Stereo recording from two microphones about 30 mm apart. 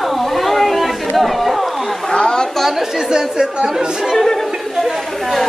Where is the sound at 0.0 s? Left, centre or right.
Centre.